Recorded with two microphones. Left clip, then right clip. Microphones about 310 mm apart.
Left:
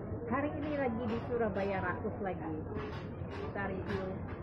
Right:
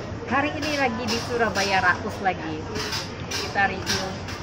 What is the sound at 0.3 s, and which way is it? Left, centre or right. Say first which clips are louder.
Speech: right 12 dB; centre.